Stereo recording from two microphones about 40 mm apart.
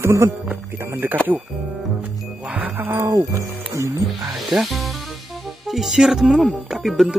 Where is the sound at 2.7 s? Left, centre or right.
Right.